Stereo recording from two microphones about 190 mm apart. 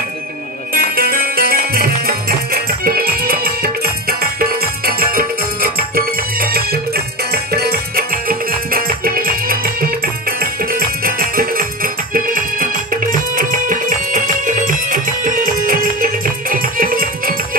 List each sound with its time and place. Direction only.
0.7 s music: 50° right (ahead or behind)